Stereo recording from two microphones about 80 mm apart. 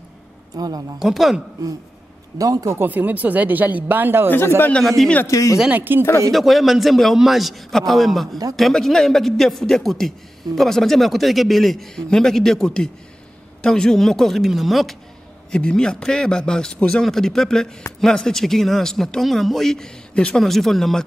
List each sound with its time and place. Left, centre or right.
0.6 s speech: right
0.9 s a man's voice: centre
2.3 s speech: right
2.8 s speech: right
4.8 s a man's voice: centre
5.2 s speech: left
5.7 s speech: right
6.3 s a man's voice: centre